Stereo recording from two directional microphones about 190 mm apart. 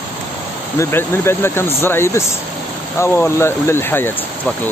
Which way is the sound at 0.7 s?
15° left (ahead or behind).